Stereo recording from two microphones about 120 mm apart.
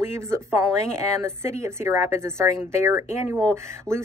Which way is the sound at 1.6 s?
25° right (ahead or behind).